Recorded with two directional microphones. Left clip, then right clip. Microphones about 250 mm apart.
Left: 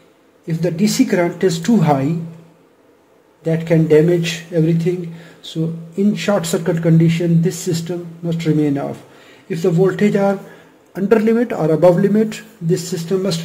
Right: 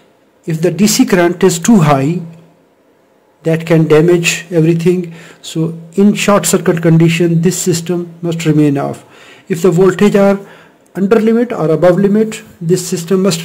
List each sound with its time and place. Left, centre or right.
0.5 s speech: right
3.4 s speech: right